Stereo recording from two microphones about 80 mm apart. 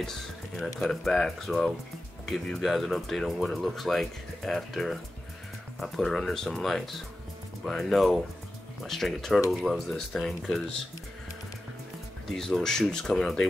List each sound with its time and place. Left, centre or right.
0.7 s speech: centre
12.3 s speech: centre